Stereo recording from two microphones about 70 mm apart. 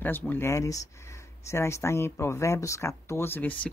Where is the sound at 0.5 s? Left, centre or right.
Left.